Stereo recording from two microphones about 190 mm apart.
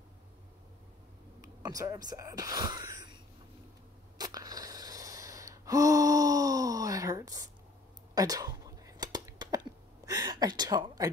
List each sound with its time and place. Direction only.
1.6 s speech: 20° right (ahead or behind)
4.2 s wheeze: 20° right (ahead or behind)
8.1 s whispering: 20° right (ahead or behind)